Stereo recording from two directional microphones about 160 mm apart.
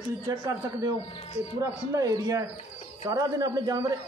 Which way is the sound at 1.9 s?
20° right (ahead or behind).